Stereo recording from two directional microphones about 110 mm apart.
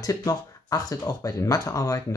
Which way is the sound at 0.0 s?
35° left (ahead or behind).